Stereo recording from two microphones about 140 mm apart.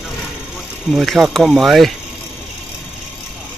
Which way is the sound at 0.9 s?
Centre (ahead or behind).